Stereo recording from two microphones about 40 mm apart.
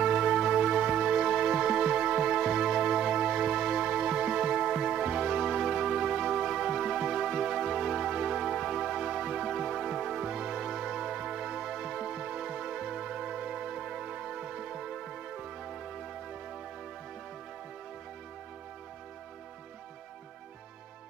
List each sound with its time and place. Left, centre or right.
0.0 s music: centre
1.3 s music: centre
1.7 s music: centre
2.2 s music: centre
10.1 s music: centre
12.2 s music: centre
14.1 s music: centre